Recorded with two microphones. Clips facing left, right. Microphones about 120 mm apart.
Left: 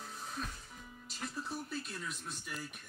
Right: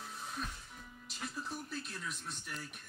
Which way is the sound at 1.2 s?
Centre (ahead or behind).